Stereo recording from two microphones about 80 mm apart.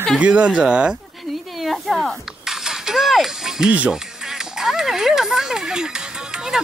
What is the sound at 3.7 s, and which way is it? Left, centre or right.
Speech, centre.